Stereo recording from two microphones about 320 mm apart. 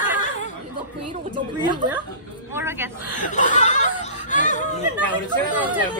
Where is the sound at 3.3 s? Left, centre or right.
Left.